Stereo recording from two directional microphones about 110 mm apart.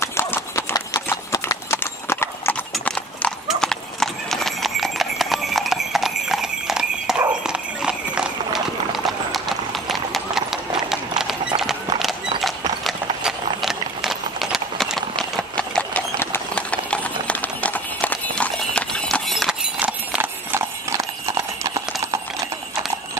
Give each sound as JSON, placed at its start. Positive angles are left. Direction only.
{"t": 0.0, "sound": "a sound", "side_deg": 25}
{"t": 1.1, "sound": "horse", "side_deg": 35}
{"t": 1.7, "sound": "clip-clop", "side_deg": 25}
{"t": 2.8, "sound": "clip-clop", "side_deg": 10}
{"t": 7.2, "sound": "horse", "side_deg": -10}
{"t": 10.9, "sound": "clip-clop", "side_deg": -5}
{"t": 12.8, "sound": "clip-clop", "side_deg": 0}
{"t": 19.8, "sound": "clip-clop", "side_deg": -15}